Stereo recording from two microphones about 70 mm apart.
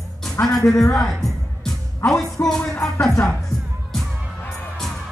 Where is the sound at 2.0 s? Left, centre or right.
Left.